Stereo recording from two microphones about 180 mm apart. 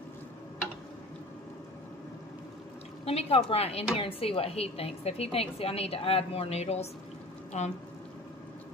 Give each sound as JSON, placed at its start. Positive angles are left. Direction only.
{"t": 3.1, "sound": "speech", "side_deg": 35}